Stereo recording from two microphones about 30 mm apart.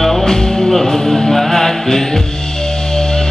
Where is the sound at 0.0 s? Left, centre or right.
Centre.